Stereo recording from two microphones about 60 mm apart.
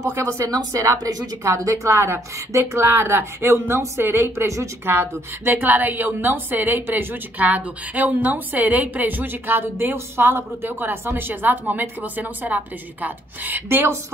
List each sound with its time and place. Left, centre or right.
0.5 s speech: right
1.9 s speech: right
4.8 s a woman's voice: right